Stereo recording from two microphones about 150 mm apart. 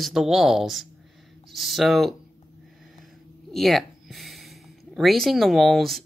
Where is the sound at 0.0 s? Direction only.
Centre (ahead or behind).